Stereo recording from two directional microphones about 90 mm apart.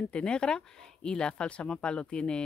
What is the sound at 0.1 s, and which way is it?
Speech, 10° left (ahead or behind).